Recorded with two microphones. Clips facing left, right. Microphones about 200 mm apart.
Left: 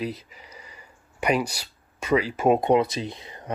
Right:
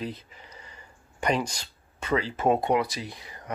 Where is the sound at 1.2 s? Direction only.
10° left (ahead or behind).